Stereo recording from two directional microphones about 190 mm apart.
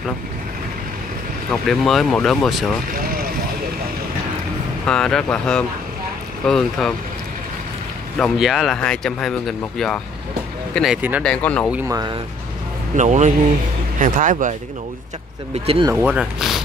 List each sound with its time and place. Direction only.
1.5 s speech: centre (ahead or behind)
4.8 s speech: 5° left (ahead or behind)
8.2 s speech: centre (ahead or behind)
10.7 s speech: centre (ahead or behind)
11.2 s speech: 5° left (ahead or behind)
11.7 s speech: 20° right (ahead or behind)
12.9 s speech: 40° right (ahead or behind)
15.5 s speech: 30° right (ahead or behind)
15.8 s speech: 10° right (ahead or behind)